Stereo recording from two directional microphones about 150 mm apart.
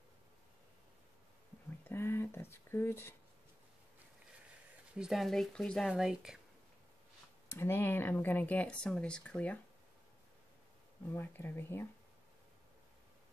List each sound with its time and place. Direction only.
1.9 s speech: 15° left (ahead or behind)
4.9 s speech: 5° right (ahead or behind)
7.4 s speech: 15° left (ahead or behind)
11.1 s speech: 15° left (ahead or behind)